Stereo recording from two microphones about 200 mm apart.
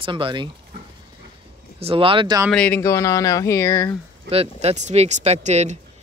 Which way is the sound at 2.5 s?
10° left (ahead or behind).